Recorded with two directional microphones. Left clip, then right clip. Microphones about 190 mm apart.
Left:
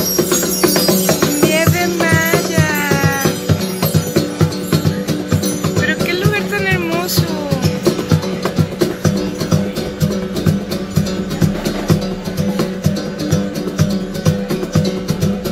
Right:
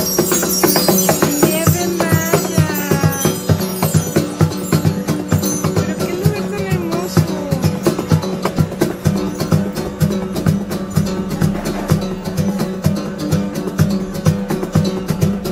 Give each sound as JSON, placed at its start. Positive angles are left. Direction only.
{"t": 1.0, "sound": "music", "side_deg": -15}
{"t": 1.5, "sound": "music", "side_deg": 0}
{"t": 2.6, "sound": "music", "side_deg": 15}